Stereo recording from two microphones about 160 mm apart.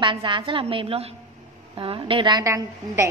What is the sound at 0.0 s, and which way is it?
A woman's voice, 30° right (ahead or behind).